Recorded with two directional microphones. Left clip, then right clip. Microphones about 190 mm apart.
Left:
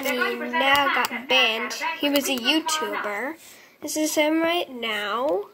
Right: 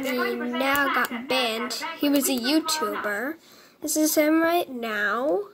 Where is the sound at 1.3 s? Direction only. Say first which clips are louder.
Left 4 dB; 50° right (ahead or behind).